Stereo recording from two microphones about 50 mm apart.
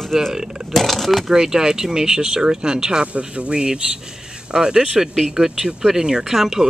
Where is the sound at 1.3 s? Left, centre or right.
Centre.